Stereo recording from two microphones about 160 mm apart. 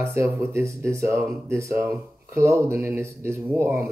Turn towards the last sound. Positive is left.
turn(degrees=-15)  # may be behind; listen again after turning